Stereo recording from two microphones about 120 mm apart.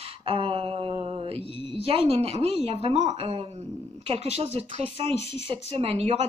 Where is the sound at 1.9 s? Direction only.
55° right (ahead or behind).